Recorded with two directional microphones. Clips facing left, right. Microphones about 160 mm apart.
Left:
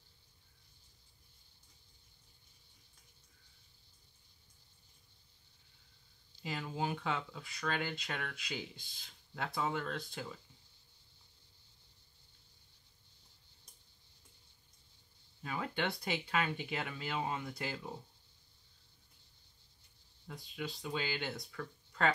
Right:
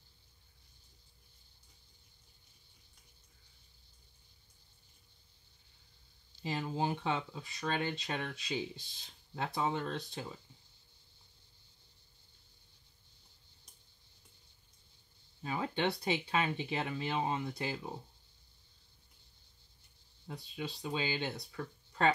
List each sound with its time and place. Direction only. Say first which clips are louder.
6.4 s speech: right 3 dB; 25° right (ahead or behind)
15.4 s speech: right 4 dB; 25° right (ahead or behind)
20.2 s speech: right 1 dB; 25° right (ahead or behind)